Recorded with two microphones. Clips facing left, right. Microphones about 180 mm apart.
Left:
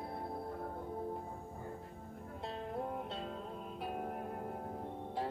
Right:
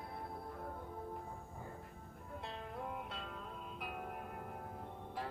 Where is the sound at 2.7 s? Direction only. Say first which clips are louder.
Left 6 dB; 35° left (ahead or behind).